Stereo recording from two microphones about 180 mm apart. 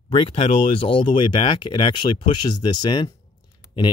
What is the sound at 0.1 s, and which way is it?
Speech, 30° left (ahead or behind).